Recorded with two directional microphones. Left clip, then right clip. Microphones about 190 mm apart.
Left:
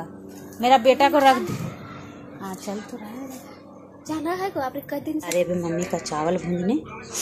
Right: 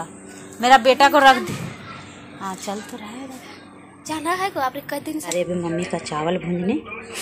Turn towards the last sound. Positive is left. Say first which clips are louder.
# right 1 dB
turn(degrees=5)  # may be behind; listen again after turning